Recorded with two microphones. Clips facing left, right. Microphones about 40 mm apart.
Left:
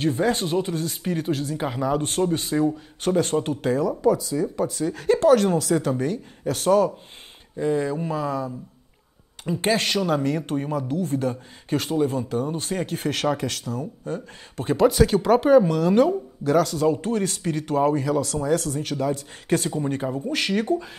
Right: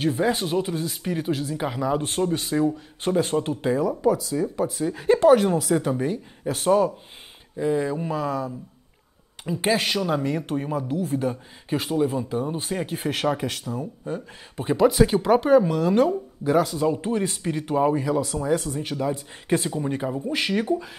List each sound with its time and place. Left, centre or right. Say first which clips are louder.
0.0 s speech: left 1 dB; centre
9.6 s speech: even; centre
16.4 s speech: left 1 dB; centre